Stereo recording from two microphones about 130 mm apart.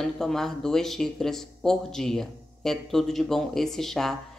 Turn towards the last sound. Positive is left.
turn(degrees=0)  # may be behind; listen again after turning